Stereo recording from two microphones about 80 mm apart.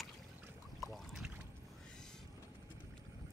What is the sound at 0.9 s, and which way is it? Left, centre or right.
Boat, centre.